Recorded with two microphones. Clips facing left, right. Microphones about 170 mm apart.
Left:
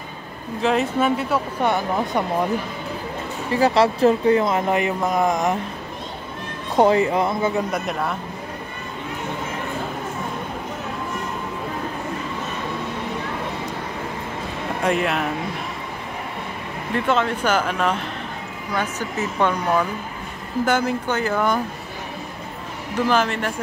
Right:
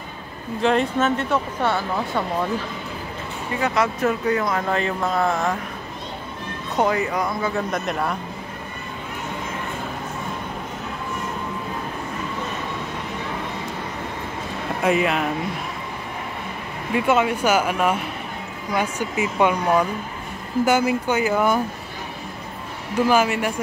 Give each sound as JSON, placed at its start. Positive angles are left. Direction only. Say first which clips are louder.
{"t": 0.6, "sound": "speech", "louder": "even", "side_deg": 5}
{"t": 3.5, "sound": "speech", "louder": "left 5 dB", "side_deg": 35}
{"t": 6.7, "sound": "speech", "louder": "left 5 dB", "side_deg": 30}
{"t": 7.7, "sound": "speech", "louder": "even", "side_deg": 0}
{"t": 14.8, "sound": "speech", "louder": "right 1 dB", "side_deg": 0}
{"t": 16.9, "sound": "speech", "louder": "right 2 dB", "side_deg": -10}
{"t": 23.0, "sound": "speech", "louder": "right 2 dB", "side_deg": -10}